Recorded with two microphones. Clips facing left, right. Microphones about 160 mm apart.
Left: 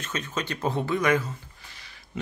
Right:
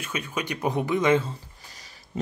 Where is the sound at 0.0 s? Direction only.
10° right (ahead or behind).